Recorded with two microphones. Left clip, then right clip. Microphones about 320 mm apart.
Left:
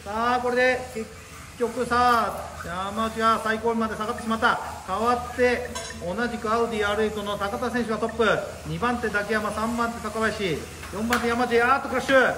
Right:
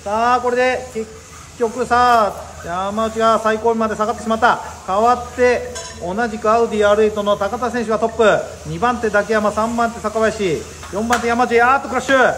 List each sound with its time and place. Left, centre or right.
0.1 s a man's voice: centre